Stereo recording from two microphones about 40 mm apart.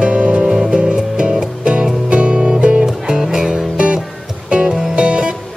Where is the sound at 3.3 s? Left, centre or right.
Centre.